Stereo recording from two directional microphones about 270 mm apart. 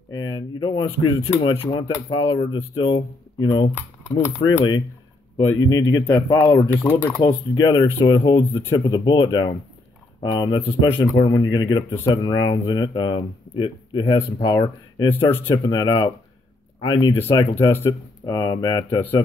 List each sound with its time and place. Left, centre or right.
0.1 s speech: centre